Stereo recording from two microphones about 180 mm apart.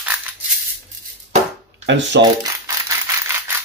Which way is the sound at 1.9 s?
80° right.